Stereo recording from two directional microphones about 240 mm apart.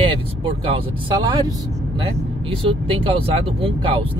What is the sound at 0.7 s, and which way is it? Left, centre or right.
Speech, centre.